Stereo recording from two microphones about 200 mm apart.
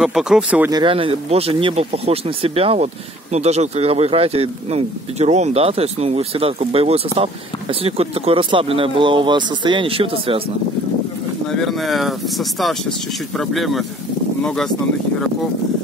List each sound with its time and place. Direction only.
0.0 s speech: 5° right (ahead or behind)
0.7 s speech: 25° right (ahead or behind)
11.6 s speech: centre (ahead or behind)